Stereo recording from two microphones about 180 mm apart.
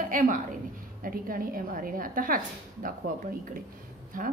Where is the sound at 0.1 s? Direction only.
45° right (ahead or behind).